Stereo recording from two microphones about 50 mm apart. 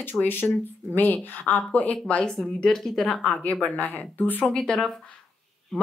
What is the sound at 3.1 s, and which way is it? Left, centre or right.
Speech, left.